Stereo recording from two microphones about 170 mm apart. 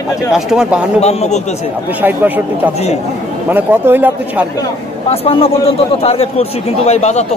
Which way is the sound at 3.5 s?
10° right (ahead or behind).